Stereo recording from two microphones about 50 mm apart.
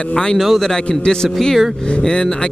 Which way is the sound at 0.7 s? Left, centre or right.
Centre.